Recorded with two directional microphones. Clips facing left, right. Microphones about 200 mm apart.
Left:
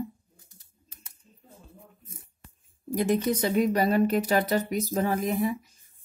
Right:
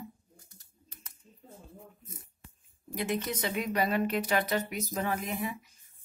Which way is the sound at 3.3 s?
40° left (ahead or behind).